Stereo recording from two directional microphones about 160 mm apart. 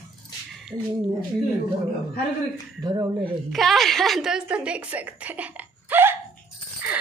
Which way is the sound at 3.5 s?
Centre (ahead or behind).